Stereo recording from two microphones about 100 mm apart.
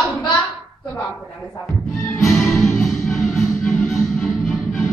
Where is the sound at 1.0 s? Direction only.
5° left (ahead or behind).